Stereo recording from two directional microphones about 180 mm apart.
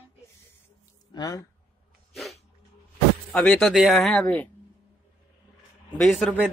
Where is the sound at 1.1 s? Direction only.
20° left (ahead or behind).